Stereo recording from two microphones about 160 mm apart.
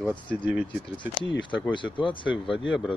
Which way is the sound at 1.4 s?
30° left (ahead or behind).